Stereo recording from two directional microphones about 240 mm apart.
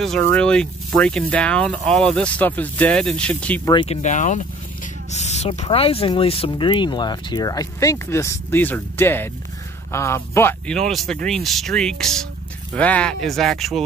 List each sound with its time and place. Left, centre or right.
0.3 s speech: centre
3.7 s speech: left; by 13.8 s centre